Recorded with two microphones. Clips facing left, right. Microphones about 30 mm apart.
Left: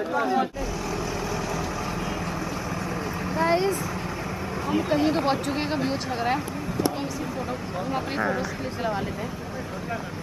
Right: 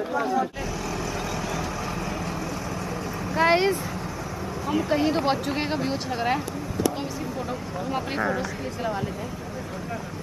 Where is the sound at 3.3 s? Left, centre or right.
Right.